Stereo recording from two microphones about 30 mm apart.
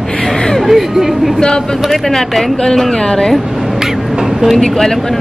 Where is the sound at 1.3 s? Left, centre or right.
Centre.